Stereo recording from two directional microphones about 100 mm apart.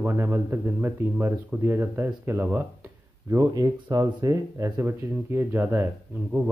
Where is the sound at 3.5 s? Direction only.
40° right (ahead or behind).